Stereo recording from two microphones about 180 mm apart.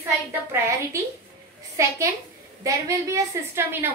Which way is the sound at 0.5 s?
15° right (ahead or behind).